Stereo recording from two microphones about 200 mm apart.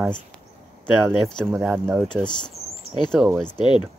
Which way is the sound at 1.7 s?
10° right (ahead or behind).